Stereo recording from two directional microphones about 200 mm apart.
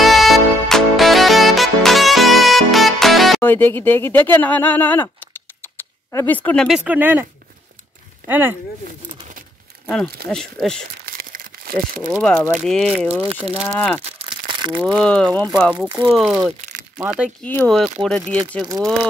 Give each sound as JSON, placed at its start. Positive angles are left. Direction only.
{"t": 0.0, "sound": "music", "side_deg": 0}
{"t": 6.1, "sound": "speech", "side_deg": 10}
{"t": 6.8, "sound": "speech", "side_deg": -10}
{"t": 8.3, "sound": "speech", "side_deg": -10}
{"t": 10.3, "sound": "speech", "side_deg": 0}
{"t": 11.1, "sound": "crumpling", "side_deg": -45}
{"t": 12.1, "sound": "speech", "side_deg": 5}
{"t": 14.1, "sound": "crumpling", "side_deg": -25}
{"t": 14.5, "sound": "crushing", "side_deg": -25}
{"t": 14.9, "sound": "speech", "side_deg": 5}
{"t": 17.4, "sound": "speech", "side_deg": 5}